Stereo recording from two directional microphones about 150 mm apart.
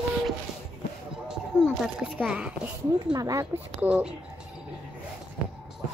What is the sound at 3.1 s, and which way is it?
Speech, 25° right (ahead or behind).